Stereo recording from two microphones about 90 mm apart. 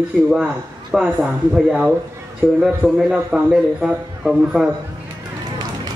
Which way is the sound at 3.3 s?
10° right (ahead or behind).